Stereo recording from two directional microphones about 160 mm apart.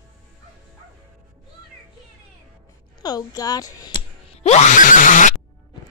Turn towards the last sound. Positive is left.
turn(degrees=55)  # may be behind; listen again after turning